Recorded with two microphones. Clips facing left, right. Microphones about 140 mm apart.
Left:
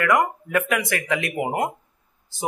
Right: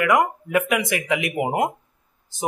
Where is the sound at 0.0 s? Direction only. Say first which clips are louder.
Right 1 dB; 20° right (ahead or behind).